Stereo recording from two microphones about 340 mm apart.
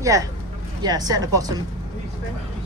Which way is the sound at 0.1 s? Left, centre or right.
Centre.